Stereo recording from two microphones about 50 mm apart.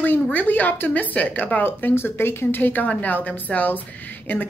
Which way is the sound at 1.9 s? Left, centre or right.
Left.